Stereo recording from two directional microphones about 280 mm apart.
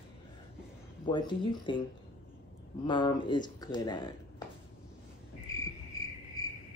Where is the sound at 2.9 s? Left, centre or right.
Centre.